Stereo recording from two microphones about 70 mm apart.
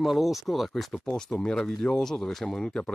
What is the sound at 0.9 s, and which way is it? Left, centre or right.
Speech, centre.